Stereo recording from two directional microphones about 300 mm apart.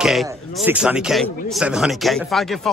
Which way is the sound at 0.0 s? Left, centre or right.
Centre.